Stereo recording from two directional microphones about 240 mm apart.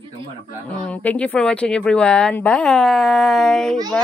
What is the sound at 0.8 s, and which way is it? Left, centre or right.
Speech, centre.